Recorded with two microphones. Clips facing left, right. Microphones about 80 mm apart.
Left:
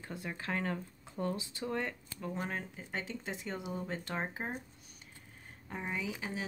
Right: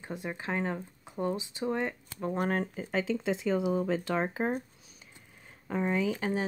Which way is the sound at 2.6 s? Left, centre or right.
Right.